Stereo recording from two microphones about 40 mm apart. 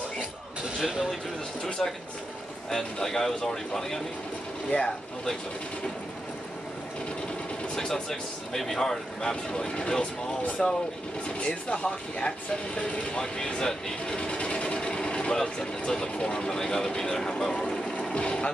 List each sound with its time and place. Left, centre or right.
0.8 s speech: centre
1.8 s speech: centre
7.7 s speech: centre
11.3 s speech: left; by 17.6 s centre
17.6 s vehicle: centre
18.1 s speech: left